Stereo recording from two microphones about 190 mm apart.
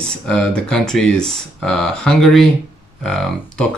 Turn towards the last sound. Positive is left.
turn(degrees=5)  # may be behind; listen again after turning